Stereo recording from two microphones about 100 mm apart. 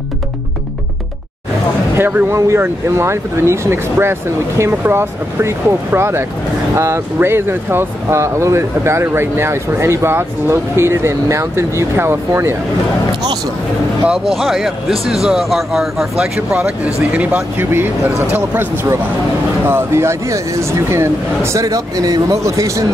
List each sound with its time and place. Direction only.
2.0 s speech: 20° right (ahead or behind)
14.0 s speech: 5° right (ahead or behind)
16.5 s speech: 15° right (ahead or behind)
19.7 s speech: 25° right (ahead or behind)